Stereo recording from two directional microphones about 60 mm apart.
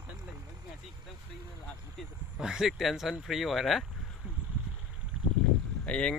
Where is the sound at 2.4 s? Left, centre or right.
Centre.